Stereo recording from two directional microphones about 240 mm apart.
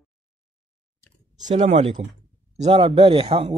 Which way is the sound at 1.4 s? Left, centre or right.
Right.